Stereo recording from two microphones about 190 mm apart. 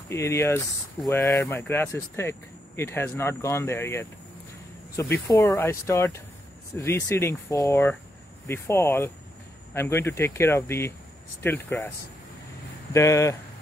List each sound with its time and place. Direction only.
0.1 s speech: 15° left (ahead or behind)
12.9 s speech: 15° left (ahead or behind)